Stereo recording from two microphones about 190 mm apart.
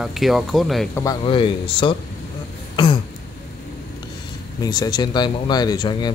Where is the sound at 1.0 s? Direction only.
25° left (ahead or behind).